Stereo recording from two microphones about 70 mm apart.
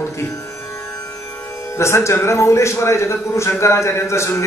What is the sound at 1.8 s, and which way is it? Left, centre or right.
A man's voice, left.